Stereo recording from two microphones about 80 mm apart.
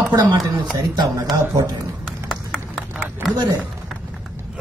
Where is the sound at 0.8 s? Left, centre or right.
Right.